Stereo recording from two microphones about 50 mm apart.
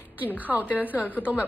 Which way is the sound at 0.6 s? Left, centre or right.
Left.